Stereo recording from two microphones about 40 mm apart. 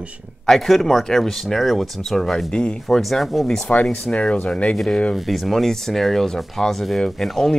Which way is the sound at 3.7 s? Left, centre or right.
Left.